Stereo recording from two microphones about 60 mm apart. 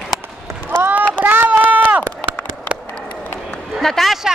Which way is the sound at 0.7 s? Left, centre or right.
Right.